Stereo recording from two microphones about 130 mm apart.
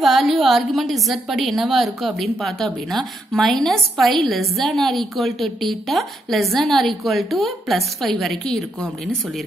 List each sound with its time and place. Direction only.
0.0 s a woman's voice: centre (ahead or behind)